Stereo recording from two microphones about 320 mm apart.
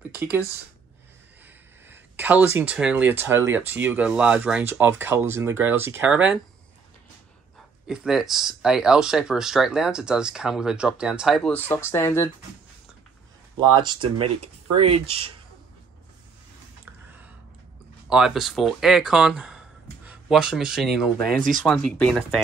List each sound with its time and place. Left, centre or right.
1.9 s speech: centre
7.8 s speech: centre
13.7 s speech: centre
18.1 s speech: centre
21.4 s speech: right
21.6 s speech: centre